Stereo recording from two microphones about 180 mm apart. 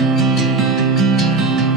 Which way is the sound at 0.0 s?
Centre (ahead or behind).